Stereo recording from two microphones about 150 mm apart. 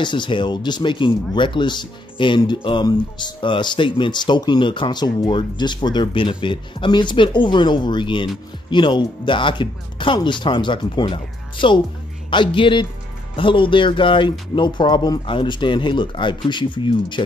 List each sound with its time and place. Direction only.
0.0 s speech: 30° left (ahead or behind)